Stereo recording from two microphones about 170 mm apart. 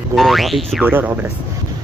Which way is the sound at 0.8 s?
10° right (ahead or behind).